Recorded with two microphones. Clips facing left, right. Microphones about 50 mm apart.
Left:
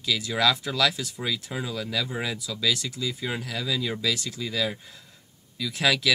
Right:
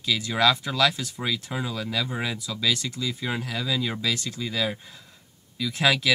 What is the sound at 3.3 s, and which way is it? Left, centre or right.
Speech, centre.